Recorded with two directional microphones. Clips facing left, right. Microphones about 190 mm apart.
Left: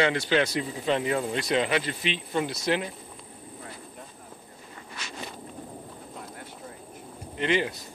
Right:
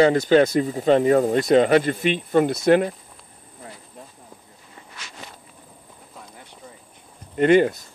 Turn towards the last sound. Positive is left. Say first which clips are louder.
# right 10 dB
turn(degrees=-50)  # may be behind; listen again after turning